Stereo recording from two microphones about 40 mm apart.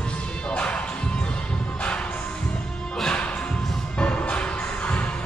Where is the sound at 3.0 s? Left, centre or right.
Left.